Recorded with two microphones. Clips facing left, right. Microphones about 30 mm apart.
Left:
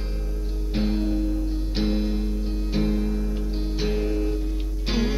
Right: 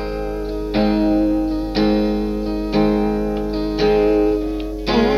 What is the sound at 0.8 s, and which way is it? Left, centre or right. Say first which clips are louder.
Music: right 10 dB; right.